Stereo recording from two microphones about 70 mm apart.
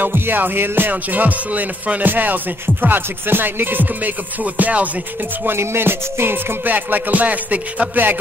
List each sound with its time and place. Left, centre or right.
0.0 s music: right
5.4 s music: right